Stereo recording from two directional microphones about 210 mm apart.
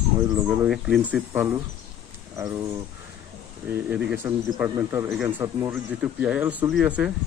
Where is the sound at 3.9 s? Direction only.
5° right (ahead or behind).